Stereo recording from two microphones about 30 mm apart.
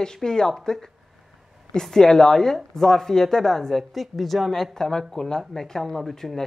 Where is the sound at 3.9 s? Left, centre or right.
Centre.